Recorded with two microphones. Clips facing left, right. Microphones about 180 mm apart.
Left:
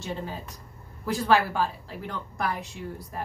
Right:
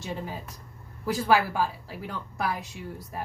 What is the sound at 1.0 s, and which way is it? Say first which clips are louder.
A woman's voice: even; 10° right (ahead or behind).